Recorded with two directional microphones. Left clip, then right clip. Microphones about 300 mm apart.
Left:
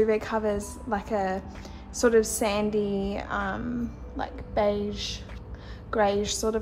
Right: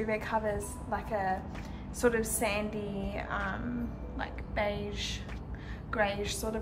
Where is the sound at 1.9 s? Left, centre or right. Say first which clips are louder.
Left 7 dB; centre.